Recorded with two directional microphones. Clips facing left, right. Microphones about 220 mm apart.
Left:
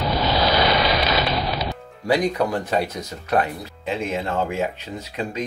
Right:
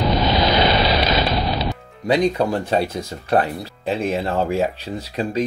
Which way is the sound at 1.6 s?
25° right (ahead or behind).